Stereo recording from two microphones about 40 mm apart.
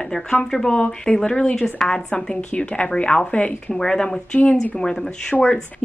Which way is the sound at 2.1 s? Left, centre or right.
Left.